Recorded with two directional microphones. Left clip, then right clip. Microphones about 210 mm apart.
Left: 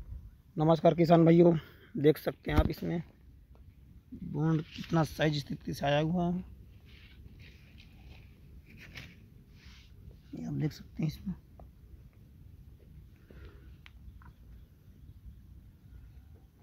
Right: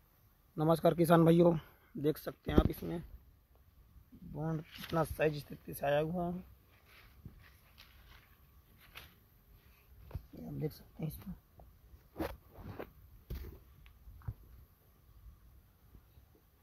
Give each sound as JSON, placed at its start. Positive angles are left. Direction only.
{"t": 0.6, "sound": "speech", "side_deg": -20}
{"t": 2.0, "sound": "speech", "side_deg": 0}
{"t": 4.4, "sound": "speech", "side_deg": 0}
{"t": 10.4, "sound": "speech", "side_deg": -5}